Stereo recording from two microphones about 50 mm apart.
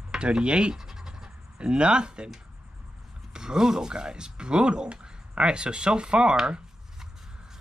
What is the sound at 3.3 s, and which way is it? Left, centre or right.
Speech, centre.